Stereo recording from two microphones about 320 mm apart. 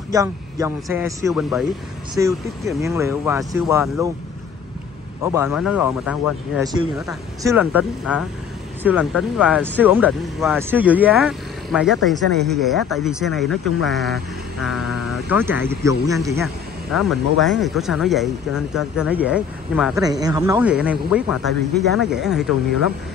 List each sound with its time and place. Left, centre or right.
0.1 s speech: centre
5.2 s speech: centre